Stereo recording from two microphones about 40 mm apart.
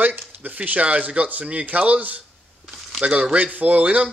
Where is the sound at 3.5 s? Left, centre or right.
Right.